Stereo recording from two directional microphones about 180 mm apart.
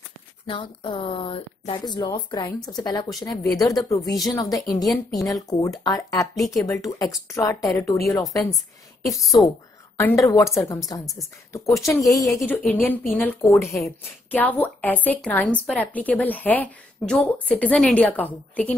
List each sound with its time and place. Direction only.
0.5 s speech: 25° left (ahead or behind)
6.3 s speech: centre (ahead or behind)
6.6 s a woman's voice: 15° left (ahead or behind)
9.9 s a woman's voice: 15° left (ahead or behind)